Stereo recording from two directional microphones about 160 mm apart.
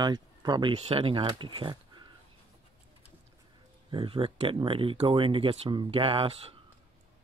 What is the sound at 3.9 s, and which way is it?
Speech, 30° right (ahead or behind).